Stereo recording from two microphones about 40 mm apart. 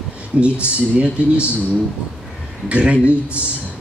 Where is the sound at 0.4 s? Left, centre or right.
Right.